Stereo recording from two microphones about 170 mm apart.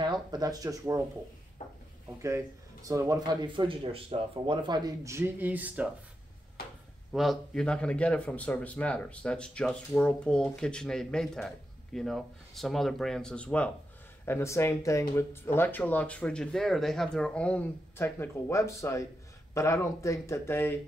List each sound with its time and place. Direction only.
0.0 s speech: 25° right (ahead or behind)
2.2 s speech: 20° right (ahead or behind)
7.1 s a man's voice: centre (ahead or behind)